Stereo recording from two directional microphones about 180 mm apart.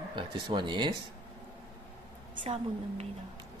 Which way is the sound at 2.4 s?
30° right (ahead or behind).